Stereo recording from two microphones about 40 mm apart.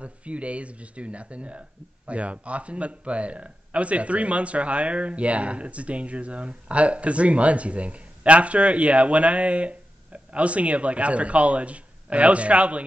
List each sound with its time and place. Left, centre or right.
0.0 s speech: right